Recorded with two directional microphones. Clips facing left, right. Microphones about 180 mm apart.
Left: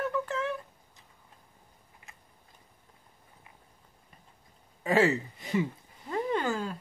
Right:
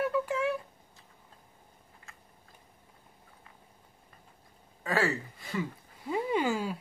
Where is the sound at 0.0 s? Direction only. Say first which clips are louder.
Right 2 dB; 10° right (ahead or behind).